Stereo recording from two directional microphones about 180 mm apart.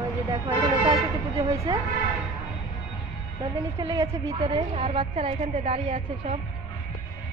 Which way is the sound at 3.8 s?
15° right (ahead or behind).